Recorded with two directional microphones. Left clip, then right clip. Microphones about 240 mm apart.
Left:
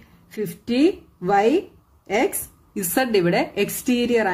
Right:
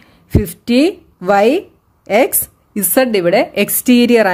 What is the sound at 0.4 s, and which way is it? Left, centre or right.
Speech, right.